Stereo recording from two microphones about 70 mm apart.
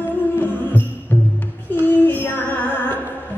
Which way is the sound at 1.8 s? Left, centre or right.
Left.